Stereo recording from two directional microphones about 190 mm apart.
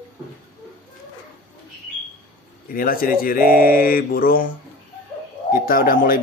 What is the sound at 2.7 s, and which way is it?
A man's voice, 50° left (ahead or behind).